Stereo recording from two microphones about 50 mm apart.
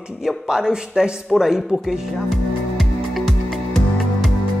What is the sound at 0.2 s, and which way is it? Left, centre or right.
Speech, centre.